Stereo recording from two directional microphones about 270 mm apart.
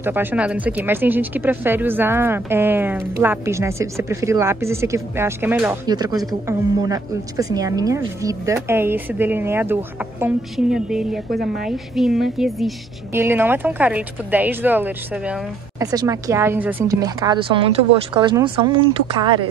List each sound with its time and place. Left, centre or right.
0.0 s speech: centre
11.3 s a woman's voice: right
11.7 s a woman's voice: centre